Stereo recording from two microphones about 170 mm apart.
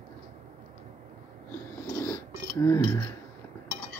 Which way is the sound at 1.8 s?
20° left (ahead or behind).